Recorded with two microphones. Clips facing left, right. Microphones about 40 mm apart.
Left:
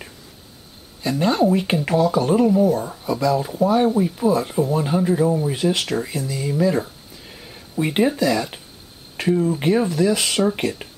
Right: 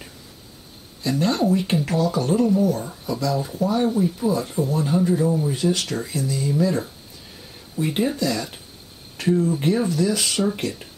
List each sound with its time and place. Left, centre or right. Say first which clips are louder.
1.2 s speech: left 3 dB; centre
6.7 s a sound: left 3 dB; left
8.2 s speech: left 4 dB; centre
10.8 s speech: left 4 dB; left